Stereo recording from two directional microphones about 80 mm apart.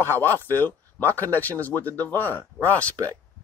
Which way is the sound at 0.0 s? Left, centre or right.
Left.